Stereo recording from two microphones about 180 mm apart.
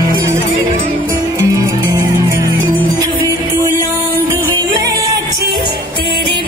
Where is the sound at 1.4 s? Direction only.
15° right (ahead or behind).